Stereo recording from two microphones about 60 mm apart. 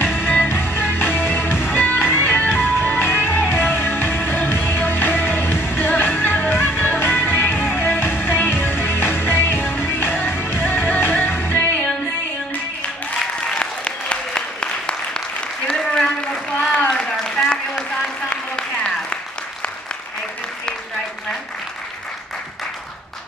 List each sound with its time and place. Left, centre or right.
0.1 s music: left
13.6 s applause: centre
16.6 s a sound: centre
18.3 s applause: centre